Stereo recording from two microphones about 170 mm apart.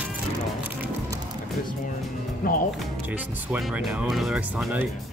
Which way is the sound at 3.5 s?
5° right (ahead or behind).